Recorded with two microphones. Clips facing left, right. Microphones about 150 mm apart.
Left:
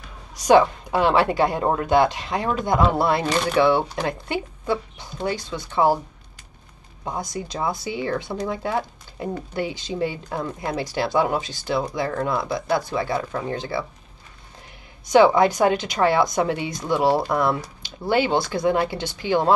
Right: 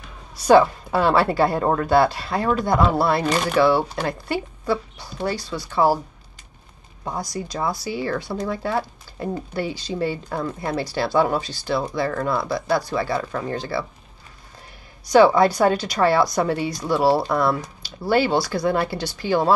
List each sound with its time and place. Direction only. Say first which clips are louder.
0.4 s speech: right 1 dB; 15° left (ahead or behind)
7.1 s speech: right 1 dB; 20° left (ahead or behind)
15.0 s speech: right 1 dB; 15° left (ahead or behind)